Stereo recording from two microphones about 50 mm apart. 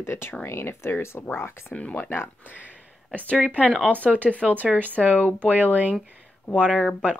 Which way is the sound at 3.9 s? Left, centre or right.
Left.